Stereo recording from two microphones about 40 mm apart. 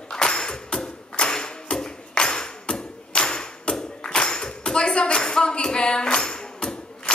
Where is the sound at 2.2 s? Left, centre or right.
Left.